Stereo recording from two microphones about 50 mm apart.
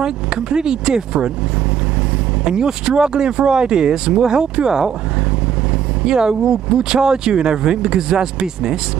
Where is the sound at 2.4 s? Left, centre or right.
Centre.